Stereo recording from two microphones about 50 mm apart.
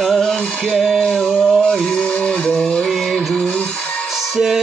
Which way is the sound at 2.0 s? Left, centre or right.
Left.